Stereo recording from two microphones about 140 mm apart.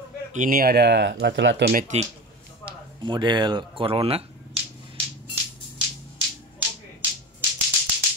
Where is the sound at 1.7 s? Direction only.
70° right (ahead or behind).